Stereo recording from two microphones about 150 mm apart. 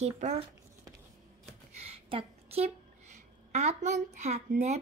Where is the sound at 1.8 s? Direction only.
40° right (ahead or behind).